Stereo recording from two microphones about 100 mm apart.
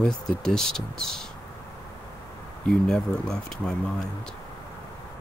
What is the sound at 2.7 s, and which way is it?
Speech, 5° left (ahead or behind).